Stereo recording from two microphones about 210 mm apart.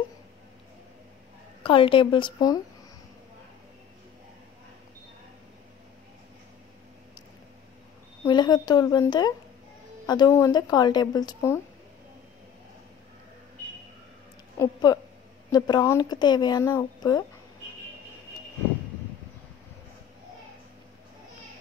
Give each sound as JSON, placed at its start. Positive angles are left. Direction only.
{"t": 1.6, "sound": "speech", "side_deg": 25}
{"t": 8.3, "sound": "speech", "side_deg": 20}
{"t": 14.6, "sound": "speech", "side_deg": 20}